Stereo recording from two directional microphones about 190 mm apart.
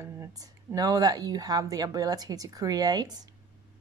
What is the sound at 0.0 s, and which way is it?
Speech, 15° right (ahead or behind).